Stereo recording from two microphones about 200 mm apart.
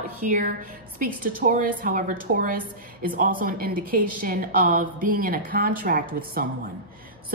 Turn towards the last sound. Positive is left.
turn(degrees=-45)  # may be behind; listen again after turning